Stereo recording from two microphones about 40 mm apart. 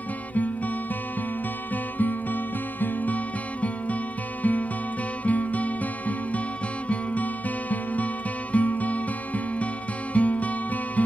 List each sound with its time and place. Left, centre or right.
2.0 s music: left
7.7 s music: left
10.1 s music: left